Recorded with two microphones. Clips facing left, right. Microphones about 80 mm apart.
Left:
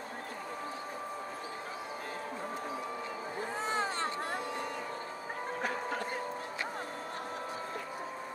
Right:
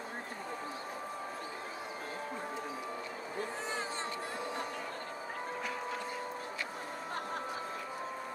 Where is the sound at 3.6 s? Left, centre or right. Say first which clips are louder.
Left 5 dB; left.